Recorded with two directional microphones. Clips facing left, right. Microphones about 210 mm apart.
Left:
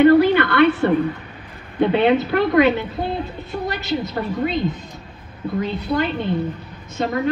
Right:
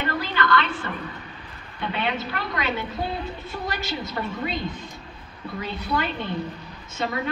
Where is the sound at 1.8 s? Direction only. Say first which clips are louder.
Left 12 dB; 50° left (ahead or behind).